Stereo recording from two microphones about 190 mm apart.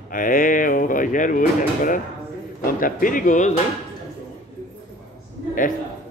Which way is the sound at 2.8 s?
45° left (ahead or behind).